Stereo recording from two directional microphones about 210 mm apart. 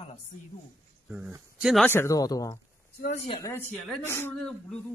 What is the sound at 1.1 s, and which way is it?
Speech, 10° right (ahead or behind).